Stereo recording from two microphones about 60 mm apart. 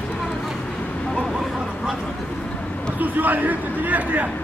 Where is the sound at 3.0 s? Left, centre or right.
Right.